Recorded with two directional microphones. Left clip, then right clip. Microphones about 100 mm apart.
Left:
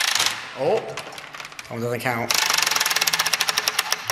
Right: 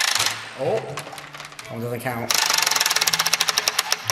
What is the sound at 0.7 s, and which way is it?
Typing, 10° right (ahead or behind).